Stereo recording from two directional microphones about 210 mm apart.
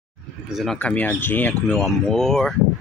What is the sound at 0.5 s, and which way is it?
Speech, centre (ahead or behind).